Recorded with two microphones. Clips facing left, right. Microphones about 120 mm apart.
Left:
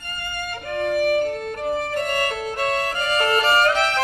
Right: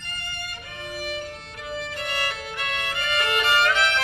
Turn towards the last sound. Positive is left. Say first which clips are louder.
# left 3 dB
turn(degrees=40)  # may be behind; listen again after turning